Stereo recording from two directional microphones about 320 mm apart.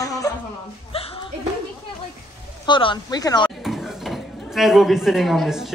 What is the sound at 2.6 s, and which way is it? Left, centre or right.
Speech, centre.